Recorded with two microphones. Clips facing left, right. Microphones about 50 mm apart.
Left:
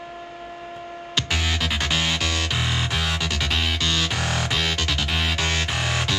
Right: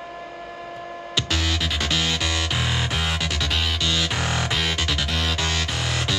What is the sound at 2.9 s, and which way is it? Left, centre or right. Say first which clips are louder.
Music: even; right.